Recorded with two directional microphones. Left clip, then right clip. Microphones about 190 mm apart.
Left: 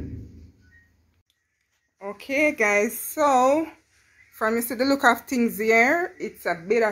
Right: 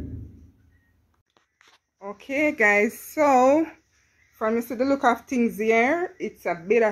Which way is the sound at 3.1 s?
30° right (ahead or behind).